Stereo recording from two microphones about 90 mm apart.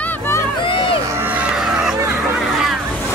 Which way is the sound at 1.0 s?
25° right (ahead or behind).